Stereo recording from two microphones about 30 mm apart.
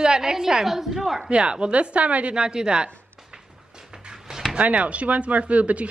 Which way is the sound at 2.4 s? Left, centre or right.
Right.